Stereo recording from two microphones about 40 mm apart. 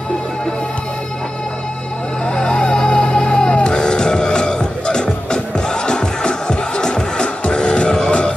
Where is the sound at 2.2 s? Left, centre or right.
Left.